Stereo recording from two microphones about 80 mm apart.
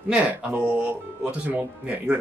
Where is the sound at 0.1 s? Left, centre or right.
Centre.